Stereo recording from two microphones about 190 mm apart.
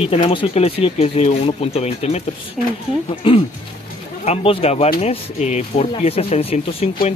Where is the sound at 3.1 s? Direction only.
30° left (ahead or behind).